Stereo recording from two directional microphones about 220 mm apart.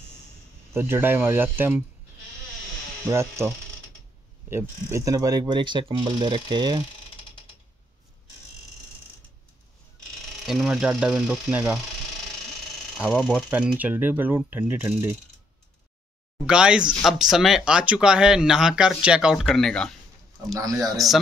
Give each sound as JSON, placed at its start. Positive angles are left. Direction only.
{"t": 0.7, "sound": "speech", "side_deg": -10}
{"t": 3.1, "sound": "speech", "side_deg": -10}
{"t": 10.4, "sound": "speech", "side_deg": 0}
{"t": 12.9, "sound": "speech", "side_deg": 0}
{"t": 16.4, "sound": "speech", "side_deg": -5}
{"t": 21.0, "sound": "speech", "side_deg": 0}